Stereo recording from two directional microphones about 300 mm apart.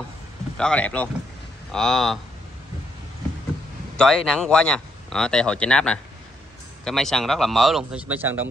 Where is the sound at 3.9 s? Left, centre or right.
Centre.